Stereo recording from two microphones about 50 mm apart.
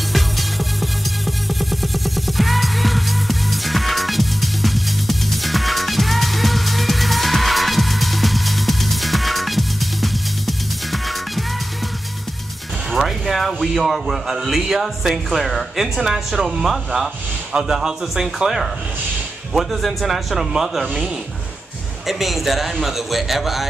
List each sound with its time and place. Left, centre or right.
0.1 s music: centre
12.9 s a sound: centre
14.4 s a man's voice: centre
22.0 s a man's voice: centre